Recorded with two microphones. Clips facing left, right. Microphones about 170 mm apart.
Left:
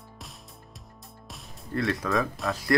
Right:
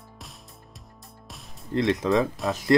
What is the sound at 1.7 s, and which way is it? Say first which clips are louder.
Speech: right 5 dB; 20° right (ahead or behind).